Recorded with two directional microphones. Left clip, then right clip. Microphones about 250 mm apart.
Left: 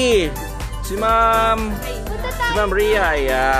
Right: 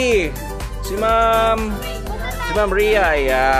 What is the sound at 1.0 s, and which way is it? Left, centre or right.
Speech, centre.